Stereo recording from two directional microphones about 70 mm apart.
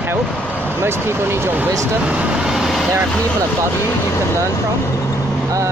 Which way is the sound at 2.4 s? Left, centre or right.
Centre.